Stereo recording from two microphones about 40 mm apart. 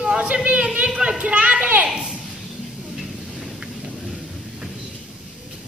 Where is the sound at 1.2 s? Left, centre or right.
Right.